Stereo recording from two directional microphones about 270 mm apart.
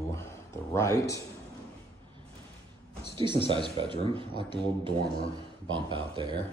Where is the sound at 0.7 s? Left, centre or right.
Centre.